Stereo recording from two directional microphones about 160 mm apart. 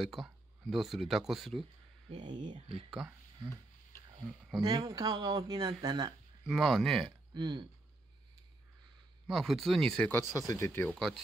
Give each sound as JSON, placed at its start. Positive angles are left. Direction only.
{"t": 0.0, "sound": "speech", "side_deg": 0}
{"t": 2.2, "sound": "speech", "side_deg": -30}
{"t": 4.6, "sound": "speech", "side_deg": -25}
{"t": 6.4, "sound": "speech", "side_deg": 0}
{"t": 7.3, "sound": "speech", "side_deg": -30}
{"t": 9.3, "sound": "speech", "side_deg": 0}
{"t": 10.9, "sound": "speech", "side_deg": 0}